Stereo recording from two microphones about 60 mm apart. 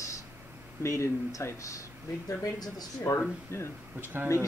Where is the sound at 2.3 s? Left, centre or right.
Left.